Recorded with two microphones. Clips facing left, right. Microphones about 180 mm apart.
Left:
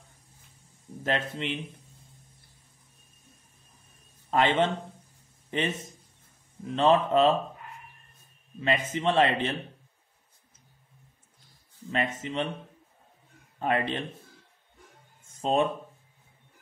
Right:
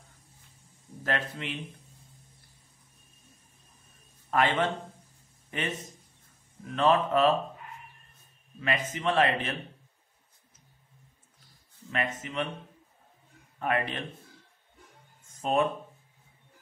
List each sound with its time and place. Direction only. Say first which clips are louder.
1.0 s speech: left 3 dB; 25° left (ahead or behind)
4.3 s a man's voice: left 2 dB; 25° left (ahead or behind)
8.5 s speech: left 3 dB; 25° left (ahead or behind)
11.9 s speech: left 3 dB; 30° left (ahead or behind)
13.6 s speech: left 2 dB; 25° left (ahead or behind)
15.4 s speech: left 2 dB; 25° left (ahead or behind)